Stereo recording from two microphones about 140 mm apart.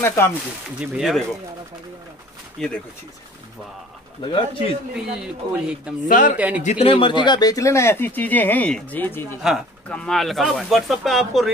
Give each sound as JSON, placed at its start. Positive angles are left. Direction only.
{"t": 0.0, "sound": "speech", "side_deg": 15}
{"t": 0.7, "sound": "speech", "side_deg": 0}
{"t": 2.6, "sound": "speech", "side_deg": 5}
{"t": 4.2, "sound": "speech", "side_deg": 40}
{"t": 4.9, "sound": "speech", "side_deg": -5}
{"t": 6.0, "sound": "a man's voice", "side_deg": 70}
{"t": 6.3, "sound": "a man's voice", "side_deg": -10}
{"t": 6.8, "sound": "speech", "side_deg": 40}